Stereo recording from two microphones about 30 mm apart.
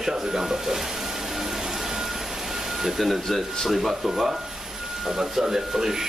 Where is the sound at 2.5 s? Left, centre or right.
Centre.